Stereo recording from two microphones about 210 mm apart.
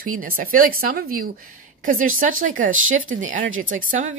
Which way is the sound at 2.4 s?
70° right (ahead or behind).